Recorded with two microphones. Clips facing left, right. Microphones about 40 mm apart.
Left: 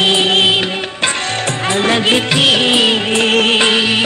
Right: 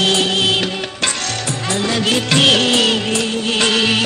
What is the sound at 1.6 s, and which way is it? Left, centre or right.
Music, left.